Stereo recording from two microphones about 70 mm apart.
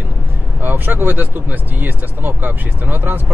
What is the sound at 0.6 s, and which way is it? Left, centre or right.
Speech, right.